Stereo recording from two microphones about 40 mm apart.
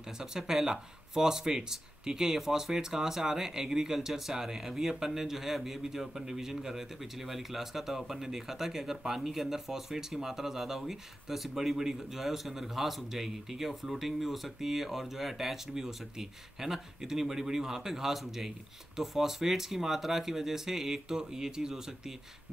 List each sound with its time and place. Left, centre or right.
0.0 s speech: centre